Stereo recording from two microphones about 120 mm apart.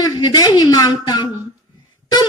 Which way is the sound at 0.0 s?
35° left (ahead or behind).